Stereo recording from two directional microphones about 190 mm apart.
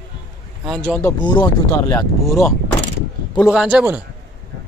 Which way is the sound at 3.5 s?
5° right (ahead or behind).